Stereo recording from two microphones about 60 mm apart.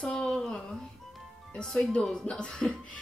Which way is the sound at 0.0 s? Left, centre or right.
Centre.